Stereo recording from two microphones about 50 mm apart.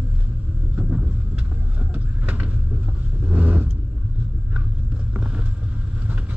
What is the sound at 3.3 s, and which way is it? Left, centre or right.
Vehicle, right.